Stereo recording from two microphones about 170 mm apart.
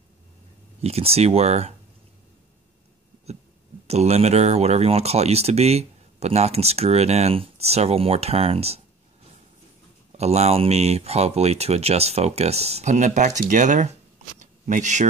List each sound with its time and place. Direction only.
0.8 s speech: 35° right (ahead or behind)
3.8 s speech: 40° right (ahead or behind)
10.1 s speech: 40° right (ahead or behind)
14.4 s a sound: 45° right (ahead or behind)